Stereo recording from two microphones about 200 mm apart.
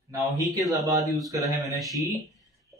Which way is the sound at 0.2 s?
Centre (ahead or behind).